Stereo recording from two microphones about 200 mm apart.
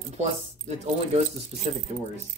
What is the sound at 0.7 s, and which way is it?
Speech, 35° right (ahead or behind).